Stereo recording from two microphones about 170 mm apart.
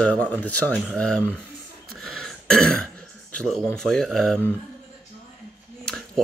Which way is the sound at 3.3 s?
5° left (ahead or behind).